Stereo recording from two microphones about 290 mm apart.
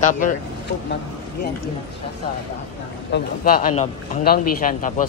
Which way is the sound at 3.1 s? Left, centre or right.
Left.